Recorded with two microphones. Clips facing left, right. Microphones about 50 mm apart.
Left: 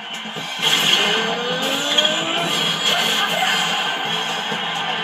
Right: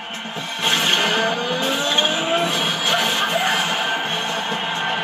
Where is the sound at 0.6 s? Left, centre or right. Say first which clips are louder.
Left 1 dB; centre.